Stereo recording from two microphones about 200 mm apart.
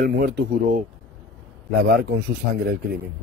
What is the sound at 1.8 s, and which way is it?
Speech, 55° right (ahead or behind).